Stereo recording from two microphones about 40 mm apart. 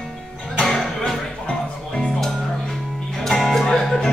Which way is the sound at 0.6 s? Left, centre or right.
Centre.